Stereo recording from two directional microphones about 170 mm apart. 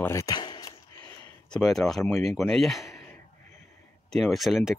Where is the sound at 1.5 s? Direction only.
Centre (ahead or behind).